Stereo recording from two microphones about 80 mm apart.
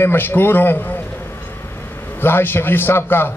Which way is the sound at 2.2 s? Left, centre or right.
Left.